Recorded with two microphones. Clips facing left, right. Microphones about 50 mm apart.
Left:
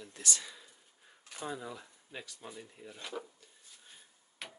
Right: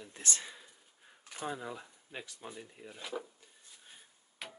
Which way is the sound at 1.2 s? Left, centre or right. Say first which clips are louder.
Right 1 dB; centre.